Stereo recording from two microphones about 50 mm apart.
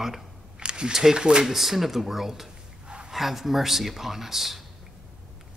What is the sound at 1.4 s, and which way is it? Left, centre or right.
Speech, centre.